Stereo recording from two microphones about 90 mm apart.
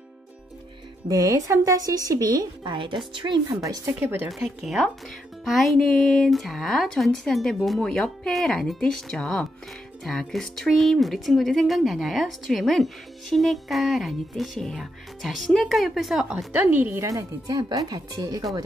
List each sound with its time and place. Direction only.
1.0 s speech: 40° right (ahead or behind)
2.7 s speech: 65° right (ahead or behind)
3.4 s speech: 40° right (ahead or behind)
4.0 s speech: 25° right (ahead or behind)
4.4 s speech: 5° right (ahead or behind)
16.5 s speech: 20° right (ahead or behind)
17.0 s speech: 35° right (ahead or behind)